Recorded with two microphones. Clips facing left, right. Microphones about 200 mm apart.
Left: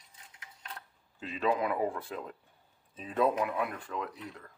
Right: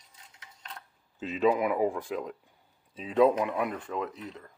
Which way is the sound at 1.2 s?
20° right (ahead or behind).